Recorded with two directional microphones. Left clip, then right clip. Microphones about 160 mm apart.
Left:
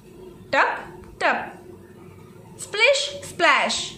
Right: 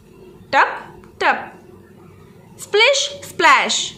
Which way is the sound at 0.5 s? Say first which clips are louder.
Right 5 dB; 20° right (ahead or behind).